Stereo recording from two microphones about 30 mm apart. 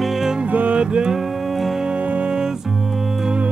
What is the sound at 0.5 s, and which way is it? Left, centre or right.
Music, right.